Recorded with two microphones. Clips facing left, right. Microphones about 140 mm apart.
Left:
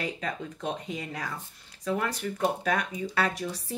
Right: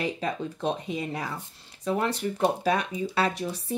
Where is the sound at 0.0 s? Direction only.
25° right (ahead or behind).